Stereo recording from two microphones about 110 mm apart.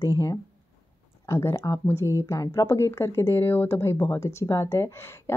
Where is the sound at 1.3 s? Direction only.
25° left (ahead or behind).